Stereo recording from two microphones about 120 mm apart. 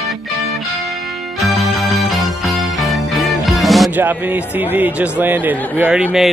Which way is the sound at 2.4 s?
Centre (ahead or behind).